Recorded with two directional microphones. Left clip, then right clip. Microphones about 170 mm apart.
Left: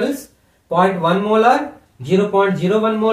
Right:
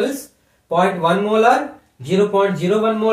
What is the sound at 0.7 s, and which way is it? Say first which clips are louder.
Speech: left 1 dB; 15° left (ahead or behind).